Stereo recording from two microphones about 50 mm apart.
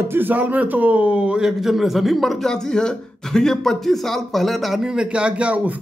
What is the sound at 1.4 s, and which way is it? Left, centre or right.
Speech, centre.